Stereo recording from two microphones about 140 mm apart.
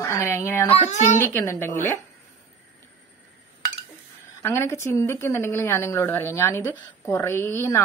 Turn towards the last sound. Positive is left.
turn(degrees=20)  # may be behind; listen again after turning